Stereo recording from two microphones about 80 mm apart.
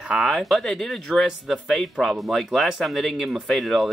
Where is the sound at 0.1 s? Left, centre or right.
Centre.